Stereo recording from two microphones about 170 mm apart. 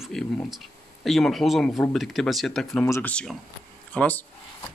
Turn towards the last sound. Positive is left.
turn(degrees=10)  # may be behind; listen again after turning